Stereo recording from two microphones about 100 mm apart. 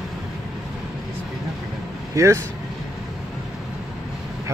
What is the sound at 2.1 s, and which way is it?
Speech, 30° right (ahead or behind).